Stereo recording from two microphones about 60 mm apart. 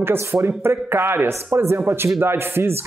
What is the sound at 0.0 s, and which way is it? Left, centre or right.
A man's voice, right.